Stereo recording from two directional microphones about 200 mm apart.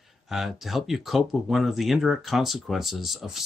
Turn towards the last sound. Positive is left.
turn(degrees=0)  # may be behind; listen again after turning